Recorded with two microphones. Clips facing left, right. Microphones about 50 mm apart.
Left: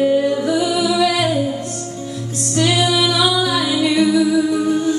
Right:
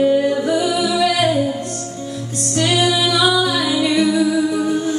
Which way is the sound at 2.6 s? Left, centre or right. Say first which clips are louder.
Even; centre.